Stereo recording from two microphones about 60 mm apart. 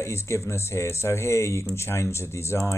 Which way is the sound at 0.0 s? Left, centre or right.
Left.